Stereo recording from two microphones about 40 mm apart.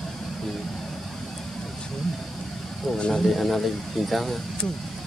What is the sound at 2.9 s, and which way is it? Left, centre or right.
Speech, centre.